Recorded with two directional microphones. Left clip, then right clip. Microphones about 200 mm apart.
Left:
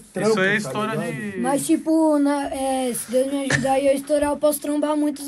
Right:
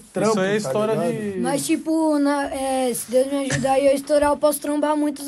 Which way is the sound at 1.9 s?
Centre (ahead or behind).